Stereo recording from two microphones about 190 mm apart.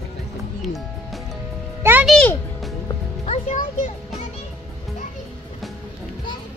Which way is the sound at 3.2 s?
35° left (ahead or behind).